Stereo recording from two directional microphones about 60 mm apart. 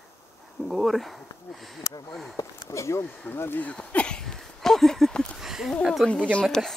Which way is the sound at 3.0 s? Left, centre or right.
Left.